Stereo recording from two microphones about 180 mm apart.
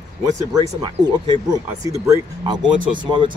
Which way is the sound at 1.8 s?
15° right (ahead or behind).